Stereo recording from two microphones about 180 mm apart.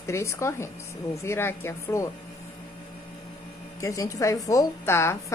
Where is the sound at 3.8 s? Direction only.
20° left (ahead or behind).